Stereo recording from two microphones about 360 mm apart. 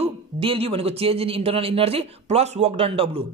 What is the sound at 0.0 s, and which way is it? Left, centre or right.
Speech, centre.